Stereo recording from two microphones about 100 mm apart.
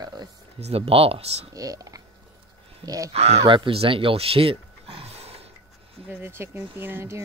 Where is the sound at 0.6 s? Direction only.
85° right.